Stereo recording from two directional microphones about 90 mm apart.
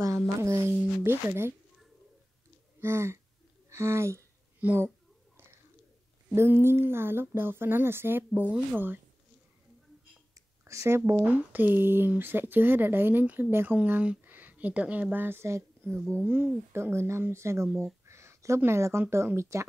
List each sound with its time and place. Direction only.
0.4 s speech: 30° right (ahead or behind)
2.8 s speech: 30° right (ahead or behind)
6.3 s speech: 30° right (ahead or behind)
10.6 s speech: 30° right (ahead or behind)
11.2 s speech: 20° right (ahead or behind)
18.0 s a sound: 35° right (ahead or behind)
18.6 s speech: 30° right (ahead or behind)